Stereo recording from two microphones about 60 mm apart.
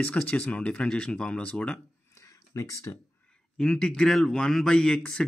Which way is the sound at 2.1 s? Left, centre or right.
Left.